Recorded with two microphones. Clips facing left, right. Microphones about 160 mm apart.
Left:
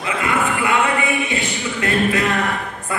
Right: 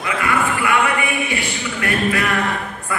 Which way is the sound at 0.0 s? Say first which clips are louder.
Even; 25° left (ahead or behind).